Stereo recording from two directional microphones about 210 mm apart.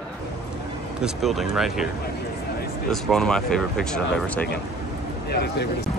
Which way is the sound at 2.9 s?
Centre (ahead or behind).